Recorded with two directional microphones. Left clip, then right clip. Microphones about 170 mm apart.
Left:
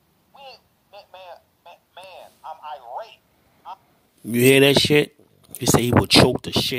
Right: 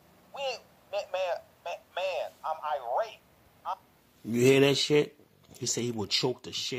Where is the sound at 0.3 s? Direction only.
40° right (ahead or behind).